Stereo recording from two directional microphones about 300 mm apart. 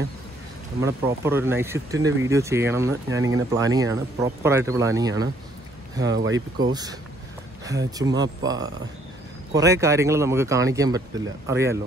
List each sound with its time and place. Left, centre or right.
0.7 s speech: centre
6.0 s speech: right
6.7 s speech: centre
8.0 s speech: centre